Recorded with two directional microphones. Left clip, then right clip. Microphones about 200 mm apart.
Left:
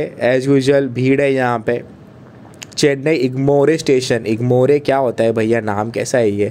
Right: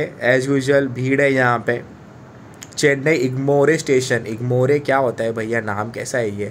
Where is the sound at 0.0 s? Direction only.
40° left (ahead or behind).